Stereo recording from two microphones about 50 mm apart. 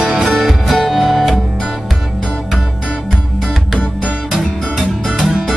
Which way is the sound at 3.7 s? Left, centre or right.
Left.